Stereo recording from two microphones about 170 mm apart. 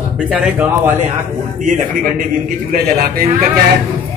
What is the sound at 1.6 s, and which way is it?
Speech, 50° right (ahead or behind).